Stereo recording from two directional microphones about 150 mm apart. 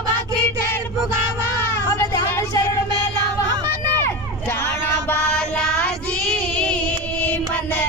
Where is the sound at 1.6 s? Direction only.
15° left (ahead or behind).